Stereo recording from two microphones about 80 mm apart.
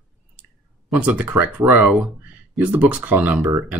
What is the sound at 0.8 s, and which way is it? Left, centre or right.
Speech, centre.